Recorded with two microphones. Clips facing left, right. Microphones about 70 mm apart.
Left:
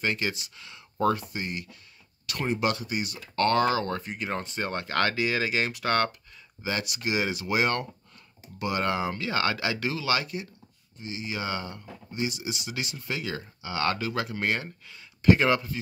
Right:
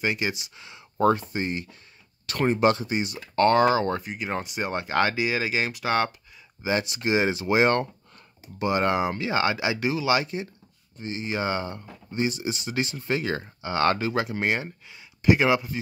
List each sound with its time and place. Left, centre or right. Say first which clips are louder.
0.0 s speech: right 2 dB; centre
4.0 s speech: right 2 dB; centre
6.6 s speech: right 5 dB; right